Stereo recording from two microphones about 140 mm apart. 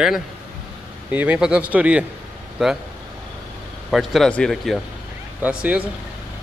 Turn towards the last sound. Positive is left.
turn(degrees=-10)  # may be behind; listen again after turning